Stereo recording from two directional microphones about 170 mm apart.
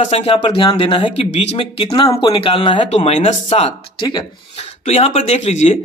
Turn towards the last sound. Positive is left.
turn(degrees=40)  # may be behind; listen again after turning